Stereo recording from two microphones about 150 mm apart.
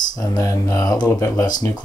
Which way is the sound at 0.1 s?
25° left (ahead or behind).